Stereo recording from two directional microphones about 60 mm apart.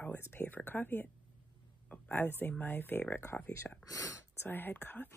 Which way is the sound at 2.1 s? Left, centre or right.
Left.